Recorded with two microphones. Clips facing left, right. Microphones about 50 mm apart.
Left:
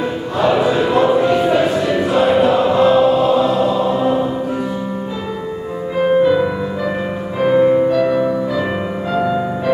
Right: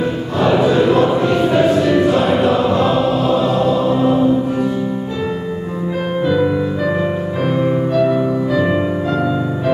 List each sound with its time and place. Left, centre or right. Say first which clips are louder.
0.4 s cattle: right 1 dB; centre
5.9 s music: left 5 dB; centre